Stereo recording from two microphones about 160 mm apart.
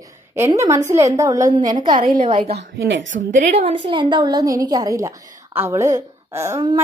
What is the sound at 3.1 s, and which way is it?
Speech, 55° right (ahead or behind).